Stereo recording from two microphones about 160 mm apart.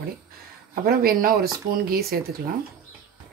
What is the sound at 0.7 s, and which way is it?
Speech, 70° right (ahead or behind).